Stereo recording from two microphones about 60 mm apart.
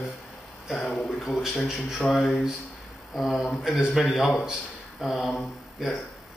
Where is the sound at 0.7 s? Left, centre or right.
Centre.